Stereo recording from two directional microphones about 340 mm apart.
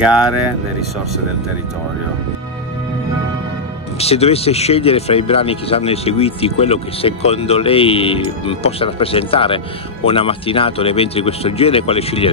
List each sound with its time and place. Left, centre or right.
4.0 s speech: centre